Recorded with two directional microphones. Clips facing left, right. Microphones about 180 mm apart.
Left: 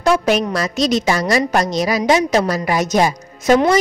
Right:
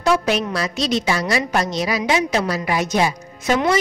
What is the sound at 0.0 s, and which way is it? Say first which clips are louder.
A woman's voice: left 3 dB; 45° left (ahead or behind).